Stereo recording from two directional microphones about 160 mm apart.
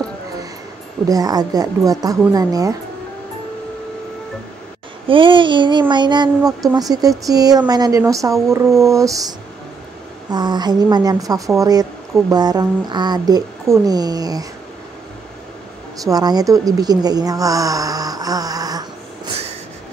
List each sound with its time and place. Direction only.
1.0 s a woman's voice: 25° right (ahead or behind)
5.0 s a woman's voice: 30° right (ahead or behind)
10.3 s a woman's voice: 25° right (ahead or behind)
16.0 s a woman's voice: 25° right (ahead or behind)